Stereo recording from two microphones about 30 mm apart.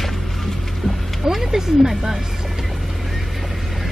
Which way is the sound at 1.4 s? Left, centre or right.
Centre.